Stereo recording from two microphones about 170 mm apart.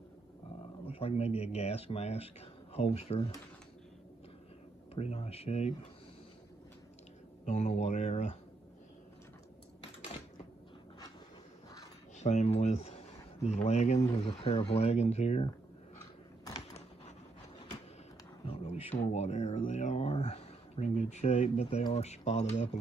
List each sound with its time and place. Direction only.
0.8 s speech: 35° left (ahead or behind)
4.9 s speech: 40° left (ahead or behind)
7.4 s speech: 45° left (ahead or behind)
12.2 s speech: 40° left (ahead or behind)
16.0 s a sound: 20° left (ahead or behind)
18.4 s speech: 35° left (ahead or behind)